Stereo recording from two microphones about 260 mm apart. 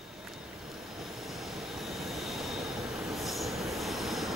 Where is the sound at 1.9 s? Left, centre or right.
Centre.